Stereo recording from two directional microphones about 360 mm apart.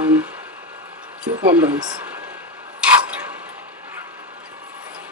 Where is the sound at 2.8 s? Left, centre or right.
Centre.